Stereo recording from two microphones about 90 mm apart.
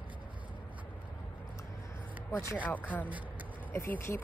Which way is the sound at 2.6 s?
20° left (ahead or behind).